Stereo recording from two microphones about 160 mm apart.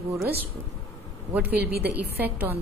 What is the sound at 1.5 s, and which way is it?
Speech, 80° right.